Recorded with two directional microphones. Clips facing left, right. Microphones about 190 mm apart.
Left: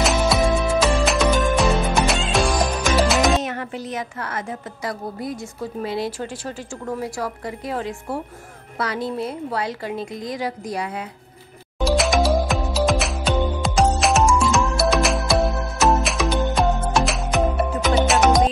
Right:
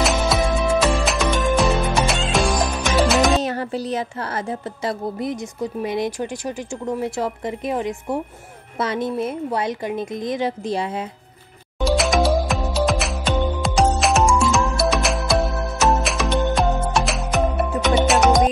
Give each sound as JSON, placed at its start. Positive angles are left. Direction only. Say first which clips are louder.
{"t": 0.0, "sound": "music", "louder": "left 1 dB", "side_deg": 0}
{"t": 3.4, "sound": "a woman's voice", "louder": "right 4 dB", "side_deg": -35}
{"t": 11.8, "sound": "music", "louder": "right 1 dB", "side_deg": 0}